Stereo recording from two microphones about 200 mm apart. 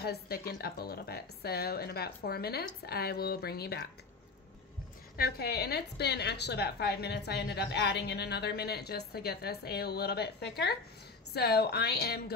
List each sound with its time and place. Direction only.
0.0 s a woman's voice: 50° left (ahead or behind)
5.1 s a woman's voice: 50° left (ahead or behind)